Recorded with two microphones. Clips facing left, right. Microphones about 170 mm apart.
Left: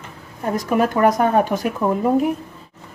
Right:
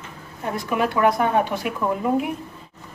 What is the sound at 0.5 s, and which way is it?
Speech, 40° left (ahead or behind).